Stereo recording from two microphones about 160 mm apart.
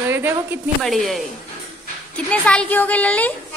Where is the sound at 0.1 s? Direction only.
15° right (ahead or behind).